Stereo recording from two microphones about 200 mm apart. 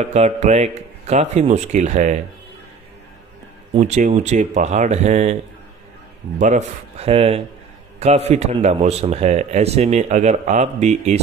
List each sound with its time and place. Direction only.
0.0 s a man's voice: 30° right (ahead or behind)
3.7 s a man's voice: 35° right (ahead or behind)